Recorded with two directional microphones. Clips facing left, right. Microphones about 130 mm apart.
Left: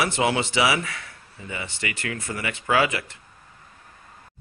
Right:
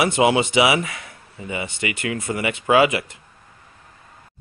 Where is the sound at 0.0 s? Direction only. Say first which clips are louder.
Right 5 dB; 15° right (ahead or behind).